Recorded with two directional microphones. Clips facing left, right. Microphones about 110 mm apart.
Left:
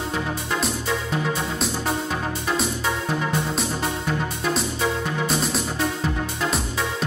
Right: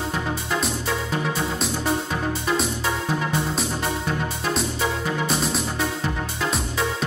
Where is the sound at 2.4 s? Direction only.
Centre (ahead or behind).